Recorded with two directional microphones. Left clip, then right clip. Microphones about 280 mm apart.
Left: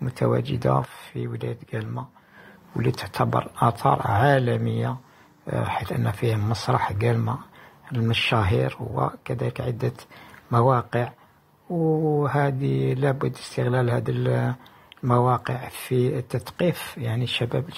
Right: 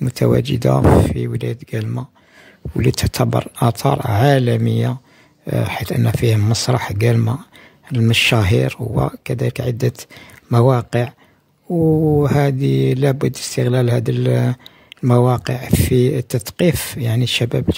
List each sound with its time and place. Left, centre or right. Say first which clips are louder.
0.0 s speech: right 7 dB; right
11.7 s speech: right 7 dB; right
12.2 s speech: right 6 dB; right